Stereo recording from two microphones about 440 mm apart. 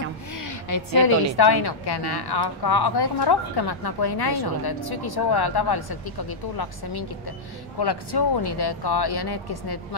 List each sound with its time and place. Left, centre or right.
0.3 s a woman's voice: left